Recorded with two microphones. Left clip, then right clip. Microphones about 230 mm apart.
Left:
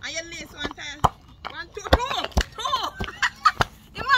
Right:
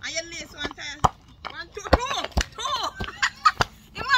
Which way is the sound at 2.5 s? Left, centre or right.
Centre.